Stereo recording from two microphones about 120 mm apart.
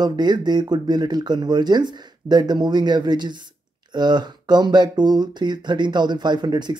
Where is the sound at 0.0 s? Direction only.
35° right (ahead or behind).